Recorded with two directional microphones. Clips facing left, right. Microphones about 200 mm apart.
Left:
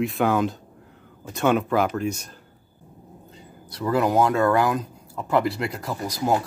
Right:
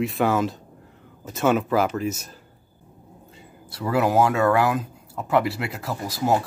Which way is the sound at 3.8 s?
5° right (ahead or behind).